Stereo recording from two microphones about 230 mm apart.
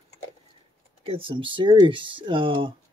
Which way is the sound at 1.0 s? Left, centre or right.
Right.